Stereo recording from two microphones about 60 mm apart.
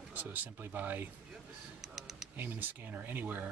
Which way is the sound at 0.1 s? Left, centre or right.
Right.